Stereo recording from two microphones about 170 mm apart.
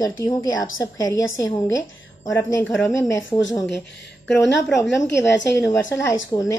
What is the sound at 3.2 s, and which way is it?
Speech, 90° left.